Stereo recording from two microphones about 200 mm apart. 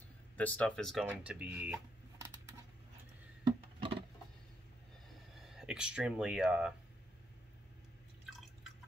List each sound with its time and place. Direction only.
0.4 s speech: 5° left (ahead or behind); by 2.3 s 15° right (ahead or behind)
3.4 s a sound: 25° right (ahead or behind)
5.6 s speech: 5° right (ahead or behind)